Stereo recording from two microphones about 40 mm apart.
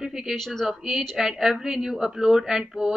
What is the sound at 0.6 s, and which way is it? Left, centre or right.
A woman's voice, centre.